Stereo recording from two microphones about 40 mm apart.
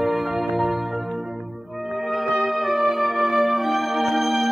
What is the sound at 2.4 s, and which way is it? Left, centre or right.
Music, centre.